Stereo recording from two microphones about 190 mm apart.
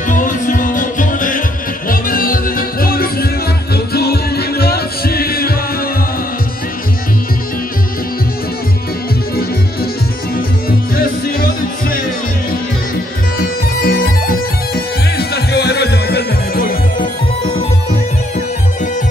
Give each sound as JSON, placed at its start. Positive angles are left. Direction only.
{"t": 0.1, "sound": "music", "side_deg": 45}
{"t": 9.3, "sound": "music", "side_deg": 55}
{"t": 11.0, "sound": "music", "side_deg": 50}
{"t": 13.7, "sound": "music", "side_deg": 50}